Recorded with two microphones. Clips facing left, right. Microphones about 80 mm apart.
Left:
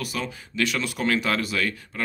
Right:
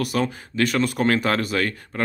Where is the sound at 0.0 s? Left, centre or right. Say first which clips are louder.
Right 7 dB; right.